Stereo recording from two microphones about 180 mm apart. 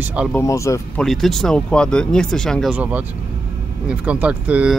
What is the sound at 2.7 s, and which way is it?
Speech, 10° right (ahead or behind).